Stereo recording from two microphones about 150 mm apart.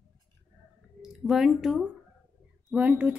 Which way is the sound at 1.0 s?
Centre (ahead or behind).